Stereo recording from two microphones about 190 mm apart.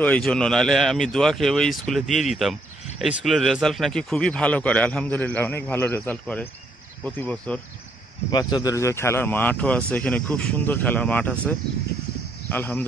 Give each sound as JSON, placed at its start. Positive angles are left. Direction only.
{"t": 0.0, "sound": "a man's voice", "side_deg": 5}
{"t": 8.3, "sound": "a man's voice", "side_deg": 20}